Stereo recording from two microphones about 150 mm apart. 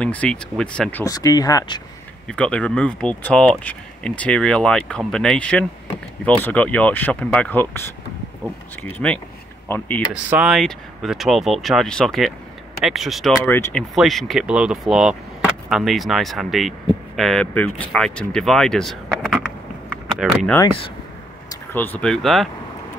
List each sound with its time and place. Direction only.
0.0 s speech: 10° left (ahead or behind)
1.0 s speech: 25° left (ahead or behind)
2.2 s speech: 5° left (ahead or behind)
8.8 s speech: 10° left (ahead or behind)
10.3 s speech: 5° right (ahead or behind)
13.5 s speech: 15° left (ahead or behind)
13.7 s speech: centre (ahead or behind)
21.7 s speech: 10° left (ahead or behind)